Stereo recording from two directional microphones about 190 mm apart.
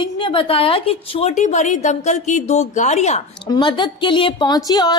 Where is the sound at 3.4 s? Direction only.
20° left (ahead or behind).